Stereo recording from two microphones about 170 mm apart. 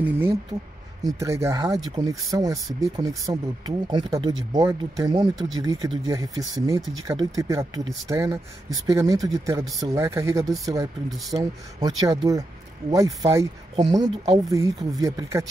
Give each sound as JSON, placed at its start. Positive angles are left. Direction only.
{"t": 0.0, "sound": "speech", "side_deg": -15}
{"t": 11.1, "sound": "speech", "side_deg": 0}
{"t": 11.8, "sound": "speech", "side_deg": -20}